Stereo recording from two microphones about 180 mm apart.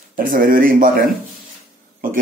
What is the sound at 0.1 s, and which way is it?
Speech, 50° right (ahead or behind).